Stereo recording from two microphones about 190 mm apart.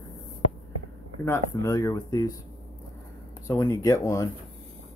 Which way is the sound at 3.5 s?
15° left (ahead or behind).